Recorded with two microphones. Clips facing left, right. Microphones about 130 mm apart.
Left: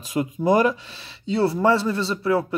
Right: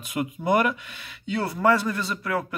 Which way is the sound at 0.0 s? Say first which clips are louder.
Left 5 dB; 35° left (ahead or behind).